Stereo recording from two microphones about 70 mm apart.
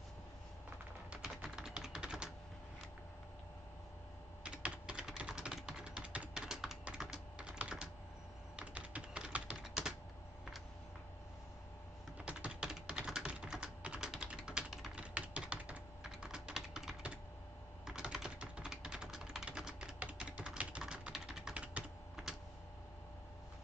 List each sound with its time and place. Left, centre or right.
1.1 s typing: centre
4.4 s typing: centre
12.2 s typing: centre